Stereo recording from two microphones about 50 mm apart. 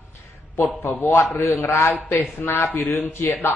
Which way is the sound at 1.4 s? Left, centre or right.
Left.